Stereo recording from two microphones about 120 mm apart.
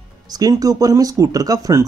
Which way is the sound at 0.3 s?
30° right (ahead or behind).